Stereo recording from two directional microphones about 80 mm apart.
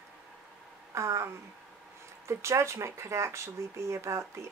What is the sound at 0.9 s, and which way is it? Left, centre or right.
Speech, right.